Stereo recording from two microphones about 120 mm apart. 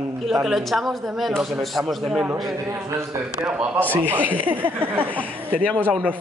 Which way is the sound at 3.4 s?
10° right (ahead or behind).